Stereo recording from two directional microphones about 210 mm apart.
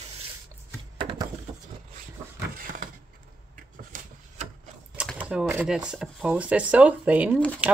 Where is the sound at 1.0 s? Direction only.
25° right (ahead or behind).